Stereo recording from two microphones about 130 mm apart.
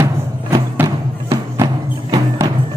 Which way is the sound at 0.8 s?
30° right (ahead or behind).